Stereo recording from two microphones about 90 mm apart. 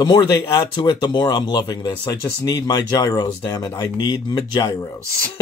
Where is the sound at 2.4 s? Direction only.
45° left (ahead or behind).